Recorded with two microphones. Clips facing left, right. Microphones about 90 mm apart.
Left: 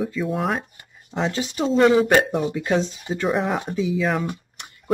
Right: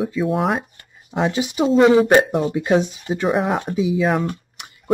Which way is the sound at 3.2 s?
5° right (ahead or behind).